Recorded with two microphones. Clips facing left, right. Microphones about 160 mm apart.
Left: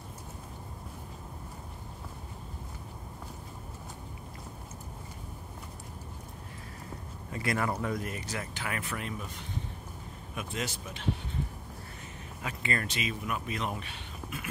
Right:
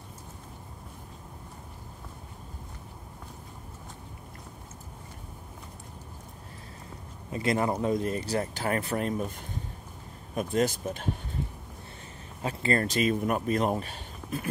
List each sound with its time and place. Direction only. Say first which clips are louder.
7.2 s speech: right 5 dB; 25° right (ahead or behind); by 11.1 s 45° right (ahead or behind)
12.4 s speech: right 7 dB; 35° right (ahead or behind)